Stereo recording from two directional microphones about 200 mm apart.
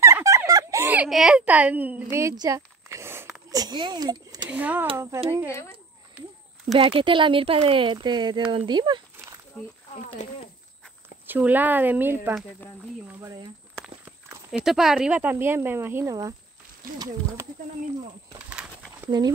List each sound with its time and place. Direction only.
0.0 s a sound: 15° right (ahead or behind)
3.4 s speech: 20° right (ahead or behind)
4.5 s speech: 5° right (ahead or behind)
6.7 s speech: 25° right (ahead or behind)
10.2 s speech: 35° left (ahead or behind)
11.2 s speech: 10° right (ahead or behind)
13.7 s speech: 5° right (ahead or behind)
18.5 s a sound: 5° right (ahead or behind)
19.0 s speech: 20° right (ahead or behind)